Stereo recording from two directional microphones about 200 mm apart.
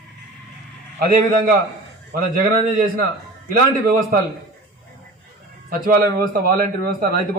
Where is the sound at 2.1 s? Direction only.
45° right (ahead or behind).